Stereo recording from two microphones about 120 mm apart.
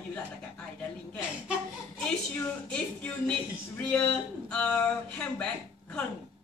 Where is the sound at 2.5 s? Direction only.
10° left (ahead or behind).